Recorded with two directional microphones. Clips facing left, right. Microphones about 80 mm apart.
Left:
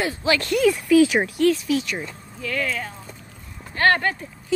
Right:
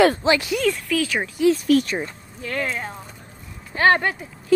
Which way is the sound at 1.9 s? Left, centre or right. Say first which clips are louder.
Right 3 dB; right.